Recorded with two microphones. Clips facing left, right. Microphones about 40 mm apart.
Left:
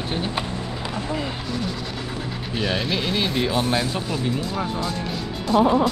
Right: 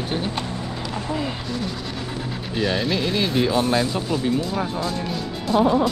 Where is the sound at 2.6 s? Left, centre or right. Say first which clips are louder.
Right 2 dB; centre.